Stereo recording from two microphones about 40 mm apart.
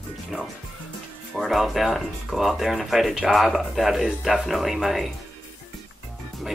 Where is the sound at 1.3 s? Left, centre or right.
Centre.